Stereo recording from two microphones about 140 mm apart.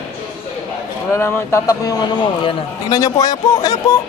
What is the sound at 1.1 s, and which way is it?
A man's voice, 20° left (ahead or behind).